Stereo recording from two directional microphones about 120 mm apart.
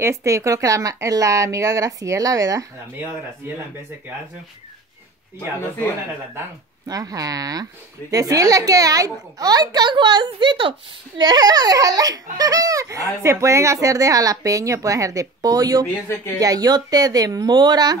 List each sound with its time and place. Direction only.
0.0 s speech: 25° right (ahead or behind)
6.9 s a child's voice: 30° right (ahead or behind)
15.9 s speech: 20° left (ahead or behind)
16.3 s a child's voice: 30° right (ahead or behind)